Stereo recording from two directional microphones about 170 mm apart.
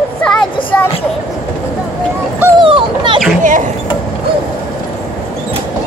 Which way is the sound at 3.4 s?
50° right (ahead or behind).